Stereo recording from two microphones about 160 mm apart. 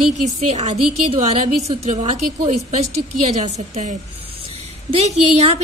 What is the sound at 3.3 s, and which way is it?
A woman's voice, 45° right (ahead or behind).